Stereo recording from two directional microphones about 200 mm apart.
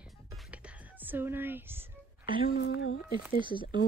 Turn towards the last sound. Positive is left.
turn(degrees=-25)  # may be behind; listen again after turning